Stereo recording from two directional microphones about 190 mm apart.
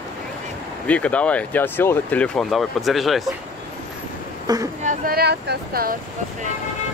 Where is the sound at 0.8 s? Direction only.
5° left (ahead or behind).